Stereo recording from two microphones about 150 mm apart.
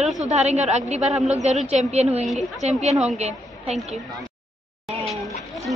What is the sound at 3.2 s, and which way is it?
Speech, 45° right (ahead or behind).